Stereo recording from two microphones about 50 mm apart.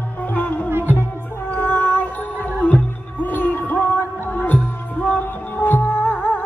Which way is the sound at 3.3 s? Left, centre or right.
Left.